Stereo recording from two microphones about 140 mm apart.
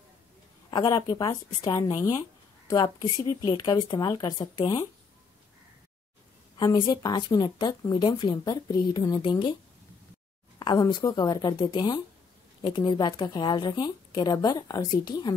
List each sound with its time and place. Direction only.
0.7 s a woman's voice: 30° left (ahead or behind)
6.6 s speech: 30° left (ahead or behind)
10.6 s speech: 30° left (ahead or behind)